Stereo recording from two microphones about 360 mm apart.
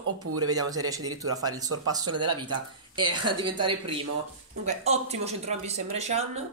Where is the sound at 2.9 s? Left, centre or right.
Centre.